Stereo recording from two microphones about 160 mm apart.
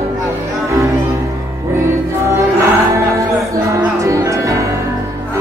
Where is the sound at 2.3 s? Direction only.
20° right (ahead or behind).